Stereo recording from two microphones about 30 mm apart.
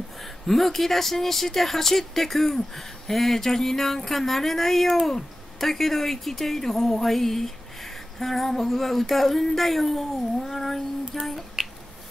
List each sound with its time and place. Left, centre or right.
0.5 s speech: centre
11.6 s finger snapping: right